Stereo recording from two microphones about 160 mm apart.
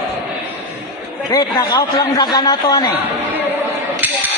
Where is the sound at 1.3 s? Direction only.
25° left (ahead or behind).